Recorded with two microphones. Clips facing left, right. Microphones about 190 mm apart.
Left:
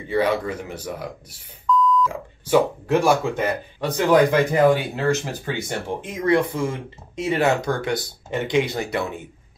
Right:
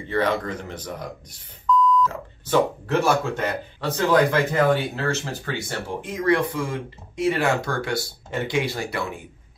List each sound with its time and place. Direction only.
0.1 s speech: 10° left (ahead or behind)
1.7 s beep: centre (ahead or behind)
2.0 s speech: 10° left (ahead or behind)